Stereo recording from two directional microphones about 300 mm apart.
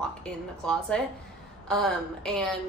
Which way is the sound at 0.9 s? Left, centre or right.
Centre.